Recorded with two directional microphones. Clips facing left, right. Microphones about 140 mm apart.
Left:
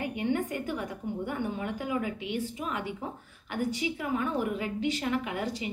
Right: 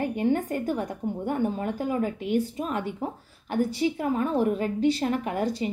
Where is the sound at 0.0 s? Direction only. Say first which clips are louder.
Right 5 dB; 40° right (ahead or behind).